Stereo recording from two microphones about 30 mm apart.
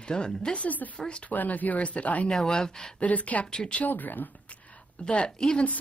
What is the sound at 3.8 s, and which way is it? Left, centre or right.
Speech, left.